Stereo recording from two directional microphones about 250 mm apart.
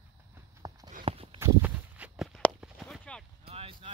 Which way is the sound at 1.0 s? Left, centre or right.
Right.